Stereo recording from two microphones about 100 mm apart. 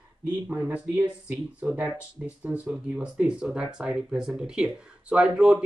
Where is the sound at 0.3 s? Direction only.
15° right (ahead or behind).